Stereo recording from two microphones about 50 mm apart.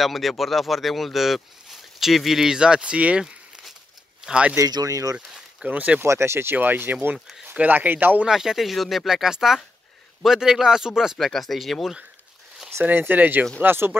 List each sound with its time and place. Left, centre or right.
0.0 s speech: centre; by 4.6 s right
4.6 s speech: right
5.7 s speech: right
6.0 s speech: right
6.5 s speech: right
8.3 s speech: centre
11.2 s speech: centre
12.8 s speech: right